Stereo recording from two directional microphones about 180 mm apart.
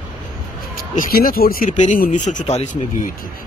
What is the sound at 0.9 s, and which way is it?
Speech, 50° left (ahead or behind).